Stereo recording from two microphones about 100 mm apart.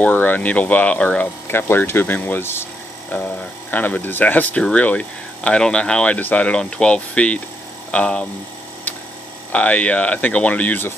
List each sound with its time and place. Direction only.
0.0 s speech: 20° left (ahead or behind)
3.7 s speech: 20° left (ahead or behind)
9.5 s speech: 15° left (ahead or behind)